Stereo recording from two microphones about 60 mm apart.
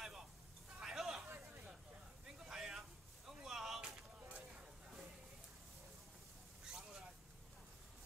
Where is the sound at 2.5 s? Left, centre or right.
Centre.